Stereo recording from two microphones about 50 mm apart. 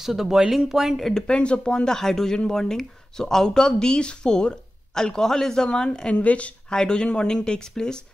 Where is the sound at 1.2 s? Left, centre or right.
Left.